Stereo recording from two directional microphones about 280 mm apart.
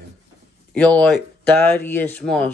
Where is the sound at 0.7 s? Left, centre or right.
Centre.